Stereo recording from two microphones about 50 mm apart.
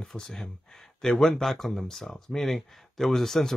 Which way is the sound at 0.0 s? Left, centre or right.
Centre.